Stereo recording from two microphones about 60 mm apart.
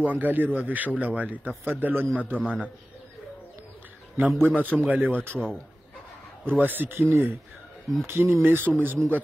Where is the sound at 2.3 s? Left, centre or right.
Centre.